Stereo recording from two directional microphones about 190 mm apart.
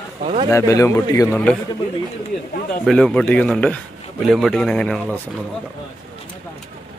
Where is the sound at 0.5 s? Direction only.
15° left (ahead or behind).